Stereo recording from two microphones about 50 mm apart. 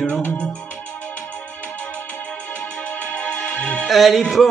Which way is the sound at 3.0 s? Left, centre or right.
Left.